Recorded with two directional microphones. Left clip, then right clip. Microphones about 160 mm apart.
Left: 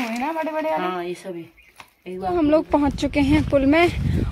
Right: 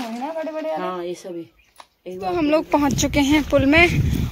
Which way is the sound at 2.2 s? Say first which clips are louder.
Left 1 dB; 20° left (ahead or behind).